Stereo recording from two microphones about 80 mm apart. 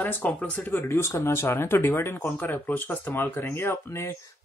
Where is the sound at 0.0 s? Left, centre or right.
Centre.